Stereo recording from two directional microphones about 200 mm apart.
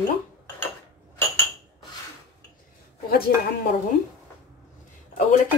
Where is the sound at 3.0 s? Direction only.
50° left (ahead or behind).